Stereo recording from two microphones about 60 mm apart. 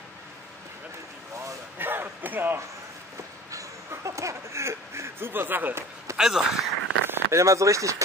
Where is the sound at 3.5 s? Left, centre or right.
Right.